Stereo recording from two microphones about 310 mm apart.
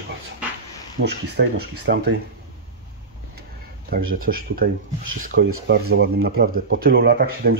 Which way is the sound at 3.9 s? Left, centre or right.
Right.